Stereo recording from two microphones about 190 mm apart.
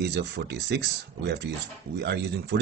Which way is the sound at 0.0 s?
60° right (ahead or behind).